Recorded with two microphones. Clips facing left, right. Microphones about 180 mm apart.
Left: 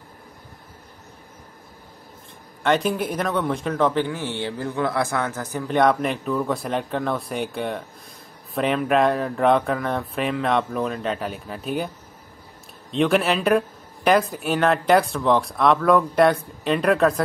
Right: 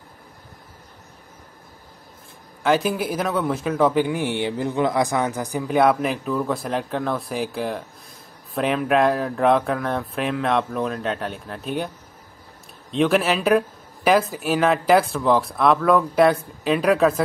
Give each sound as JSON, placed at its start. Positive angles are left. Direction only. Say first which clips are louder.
{"t": 2.6, "sound": "speech", "louder": "right 1 dB", "side_deg": -5}
{"t": 12.9, "sound": "speech", "louder": "even", "side_deg": 0}